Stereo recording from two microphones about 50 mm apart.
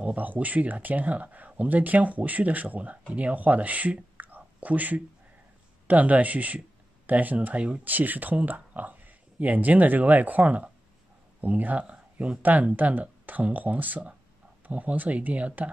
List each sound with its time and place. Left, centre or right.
0.0 s speech: right
4.4 s whispering: right
5.9 s speech: right
7.8 s speech: right